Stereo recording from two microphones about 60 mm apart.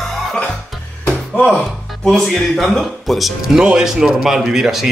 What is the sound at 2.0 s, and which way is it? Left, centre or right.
Speech, centre.